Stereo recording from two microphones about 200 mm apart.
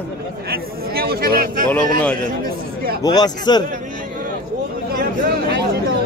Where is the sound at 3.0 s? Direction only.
20° left (ahead or behind).